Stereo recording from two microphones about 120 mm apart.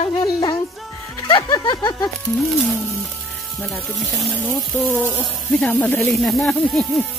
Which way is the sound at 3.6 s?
Centre (ahead or behind).